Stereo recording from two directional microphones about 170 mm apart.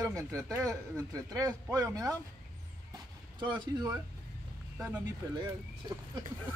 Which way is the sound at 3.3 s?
25° right (ahead or behind).